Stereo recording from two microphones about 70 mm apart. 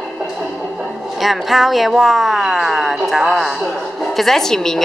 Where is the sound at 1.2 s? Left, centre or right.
Centre.